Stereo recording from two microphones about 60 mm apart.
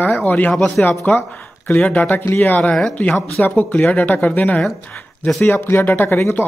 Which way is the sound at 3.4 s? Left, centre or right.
Left.